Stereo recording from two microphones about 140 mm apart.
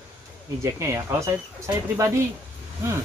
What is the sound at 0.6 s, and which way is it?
Speech, 20° right (ahead or behind).